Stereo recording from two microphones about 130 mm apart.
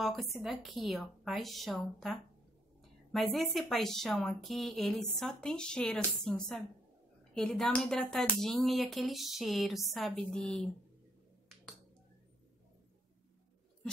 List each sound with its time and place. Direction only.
0.0 s speech: centre (ahead or behind)